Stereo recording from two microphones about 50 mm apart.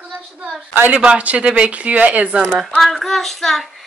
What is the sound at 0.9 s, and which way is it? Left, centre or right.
Speech, right.